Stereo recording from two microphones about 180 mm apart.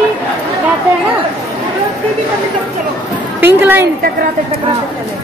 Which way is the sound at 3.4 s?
10° right (ahead or behind).